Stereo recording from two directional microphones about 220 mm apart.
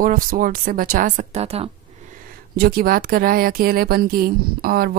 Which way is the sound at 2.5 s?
45° right (ahead or behind).